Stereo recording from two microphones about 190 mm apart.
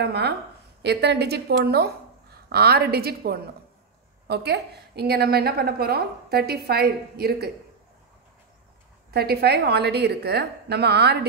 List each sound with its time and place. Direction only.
0.0 s a woman's voice: 60° right (ahead or behind)
9.1 s a woman's voice: 55° right (ahead or behind)